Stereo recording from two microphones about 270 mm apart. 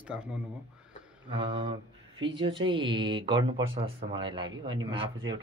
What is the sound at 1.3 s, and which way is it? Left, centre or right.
Speech, centre.